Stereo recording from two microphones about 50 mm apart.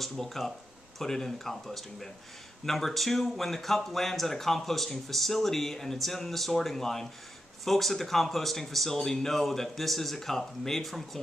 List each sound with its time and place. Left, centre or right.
0.0 s speech: centre